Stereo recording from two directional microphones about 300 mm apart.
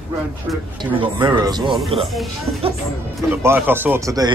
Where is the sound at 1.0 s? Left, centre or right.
Centre.